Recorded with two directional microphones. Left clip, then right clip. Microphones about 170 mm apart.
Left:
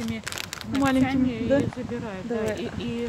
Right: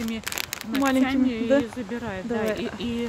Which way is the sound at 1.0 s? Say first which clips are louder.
Right 1 dB; 50° right (ahead or behind).